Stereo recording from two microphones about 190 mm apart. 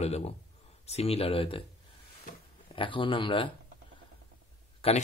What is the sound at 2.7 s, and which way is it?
Speech, 25° left (ahead or behind).